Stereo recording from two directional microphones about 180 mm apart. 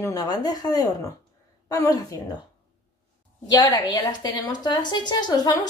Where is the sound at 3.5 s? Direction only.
20° left (ahead or behind).